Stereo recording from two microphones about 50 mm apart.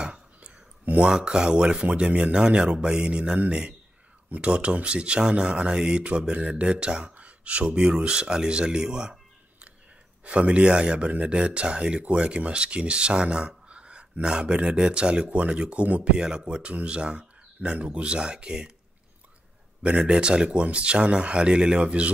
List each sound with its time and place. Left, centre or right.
0.0 s a sound: right
0.8 s speech: right
1.1 s speech: centre
19.8 s speech: right